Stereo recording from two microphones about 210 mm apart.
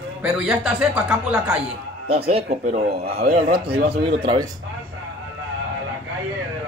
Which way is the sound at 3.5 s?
50° right (ahead or behind).